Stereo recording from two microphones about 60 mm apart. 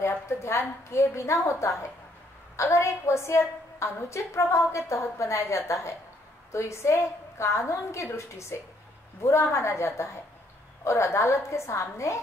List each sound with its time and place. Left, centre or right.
0.1 s a woman's voice: left